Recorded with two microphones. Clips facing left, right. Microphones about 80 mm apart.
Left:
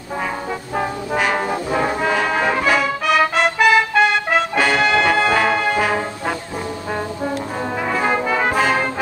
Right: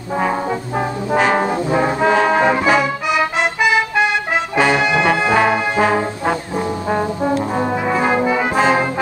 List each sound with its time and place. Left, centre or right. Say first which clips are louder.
1.1 s brass instrument: right 5 dB; right